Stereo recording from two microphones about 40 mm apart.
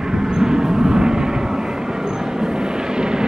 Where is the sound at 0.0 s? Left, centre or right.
Centre.